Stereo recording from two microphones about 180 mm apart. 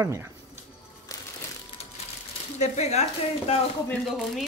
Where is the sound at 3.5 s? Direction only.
35° left (ahead or behind).